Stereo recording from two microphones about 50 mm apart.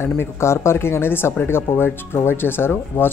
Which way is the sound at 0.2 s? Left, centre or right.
Left.